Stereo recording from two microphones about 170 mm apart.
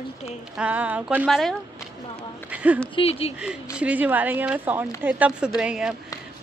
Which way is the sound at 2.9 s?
35° left (ahead or behind).